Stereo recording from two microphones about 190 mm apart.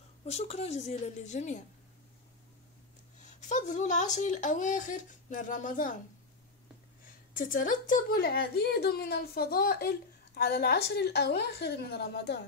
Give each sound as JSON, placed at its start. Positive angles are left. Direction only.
{"t": 0.2, "sound": "a woman's voice", "side_deg": 35}
{"t": 3.2, "sound": "a woman's voice", "side_deg": 40}
{"t": 7.3, "sound": "a woman's voice", "side_deg": 45}